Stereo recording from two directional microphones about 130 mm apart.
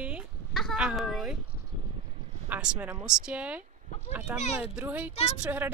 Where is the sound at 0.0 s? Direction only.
10° right (ahead or behind).